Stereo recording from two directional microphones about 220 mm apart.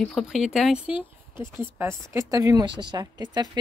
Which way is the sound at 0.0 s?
Centre (ahead or behind).